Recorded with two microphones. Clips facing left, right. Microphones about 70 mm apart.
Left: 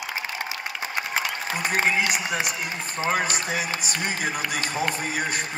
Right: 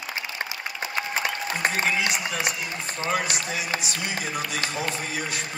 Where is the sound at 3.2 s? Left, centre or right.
Left.